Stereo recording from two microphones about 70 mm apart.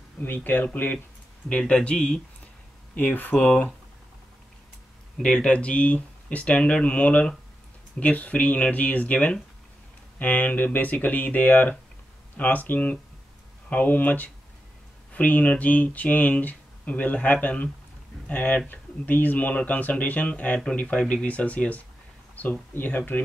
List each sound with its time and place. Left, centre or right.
0.2 s speech: left
1.5 s speech: centre
2.9 s speech: left
5.2 s speech: centre